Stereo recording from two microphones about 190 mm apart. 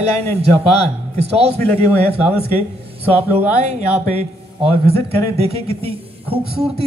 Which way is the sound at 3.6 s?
35° right (ahead or behind).